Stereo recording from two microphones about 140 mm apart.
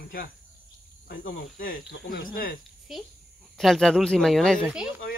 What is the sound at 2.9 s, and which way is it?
Speech, centre (ahead or behind).